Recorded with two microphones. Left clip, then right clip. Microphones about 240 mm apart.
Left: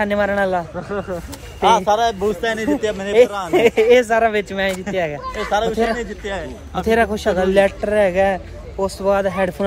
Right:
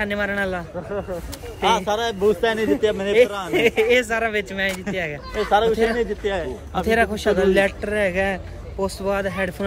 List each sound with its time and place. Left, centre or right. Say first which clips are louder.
0.0 s speech: left 5 dB; centre
0.7 s speech: left 3 dB; left
1.6 s speech: left 6 dB; centre
2.2 s speech: right 1 dB; right
3.1 s speech: left 5 dB; centre
3.5 s speech: left 5 dB; centre
5.9 s speech: right 3 dB; centre
6.8 s speech: left 3 dB; centre